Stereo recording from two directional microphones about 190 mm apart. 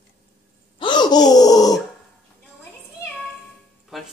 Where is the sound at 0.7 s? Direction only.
25° left (ahead or behind).